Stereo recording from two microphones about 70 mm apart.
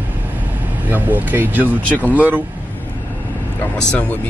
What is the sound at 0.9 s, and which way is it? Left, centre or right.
Speech, right.